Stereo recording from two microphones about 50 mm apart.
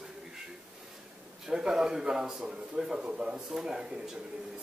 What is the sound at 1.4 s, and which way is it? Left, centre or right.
A man's voice, centre.